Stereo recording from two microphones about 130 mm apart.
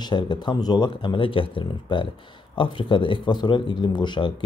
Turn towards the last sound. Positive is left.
turn(degrees=35)  # may be behind; listen again after turning